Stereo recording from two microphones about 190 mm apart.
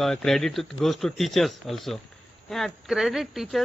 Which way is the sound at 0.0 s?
Centre (ahead or behind).